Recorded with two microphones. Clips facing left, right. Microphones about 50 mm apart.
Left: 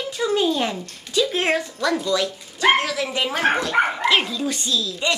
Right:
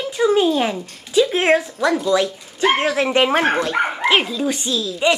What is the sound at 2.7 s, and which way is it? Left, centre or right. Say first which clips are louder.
Speech: right 6 dB; right.